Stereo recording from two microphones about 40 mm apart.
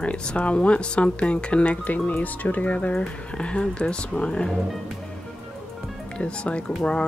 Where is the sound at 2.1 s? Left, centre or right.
Left.